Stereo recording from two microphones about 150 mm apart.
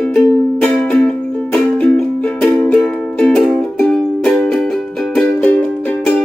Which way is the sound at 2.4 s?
5° left (ahead or behind).